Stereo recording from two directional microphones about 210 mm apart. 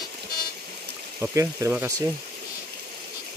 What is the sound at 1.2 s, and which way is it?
Speech, 15° right (ahead or behind).